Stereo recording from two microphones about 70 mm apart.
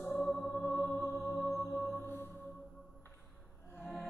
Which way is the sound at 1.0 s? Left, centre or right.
Left.